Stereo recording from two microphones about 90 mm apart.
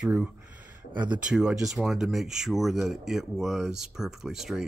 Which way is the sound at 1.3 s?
5° right (ahead or behind).